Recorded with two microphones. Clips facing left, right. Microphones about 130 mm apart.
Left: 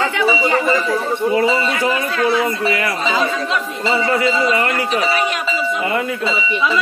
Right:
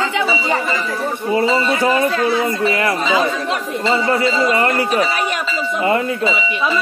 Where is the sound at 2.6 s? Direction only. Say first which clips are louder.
Right 2 dB; 35° right (ahead or behind).